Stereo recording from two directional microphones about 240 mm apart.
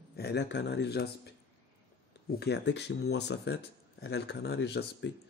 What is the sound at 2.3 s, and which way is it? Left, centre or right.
Speech, left.